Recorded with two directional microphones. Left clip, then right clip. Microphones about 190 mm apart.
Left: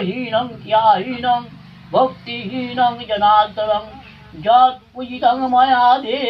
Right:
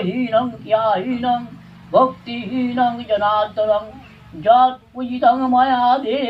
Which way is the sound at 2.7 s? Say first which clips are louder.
Left 1 dB; 20° right (ahead or behind).